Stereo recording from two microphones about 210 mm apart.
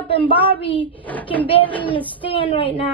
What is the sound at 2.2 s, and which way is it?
Speech, 25° left (ahead or behind).